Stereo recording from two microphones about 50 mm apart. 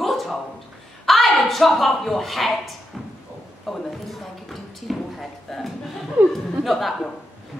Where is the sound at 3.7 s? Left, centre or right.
Centre.